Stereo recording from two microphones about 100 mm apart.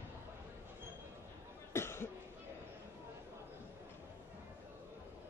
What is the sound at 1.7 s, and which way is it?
Cough, 25° left (ahead or behind).